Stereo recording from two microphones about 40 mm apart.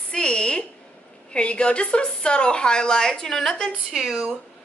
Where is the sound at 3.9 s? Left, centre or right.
Centre.